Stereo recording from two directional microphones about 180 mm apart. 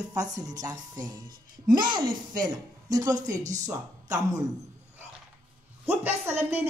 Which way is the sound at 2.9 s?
20° right (ahead or behind).